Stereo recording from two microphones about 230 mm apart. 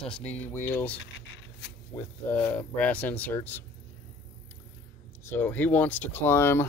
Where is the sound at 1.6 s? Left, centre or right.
Left.